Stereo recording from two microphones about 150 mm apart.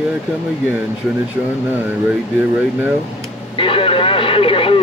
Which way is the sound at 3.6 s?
35° left (ahead or behind).